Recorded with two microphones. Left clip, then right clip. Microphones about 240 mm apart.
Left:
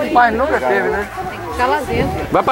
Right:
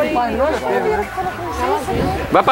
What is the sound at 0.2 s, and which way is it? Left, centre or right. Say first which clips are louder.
Speech: left 4 dB; centre.